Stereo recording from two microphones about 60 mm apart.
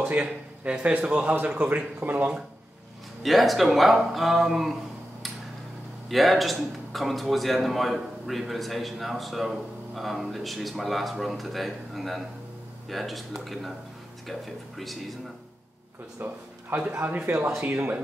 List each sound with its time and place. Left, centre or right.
0.1 s a man's voice: centre
3.2 s a man's voice: centre
6.0 s a man's voice: centre
16.2 s a man's voice: right